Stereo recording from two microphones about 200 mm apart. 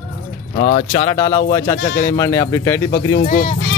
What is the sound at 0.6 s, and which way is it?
Speech, 40° left (ahead or behind).